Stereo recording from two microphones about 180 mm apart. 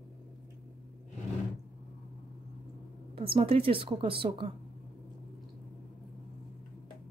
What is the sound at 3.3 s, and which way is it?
Speech, 30° right (ahead or behind).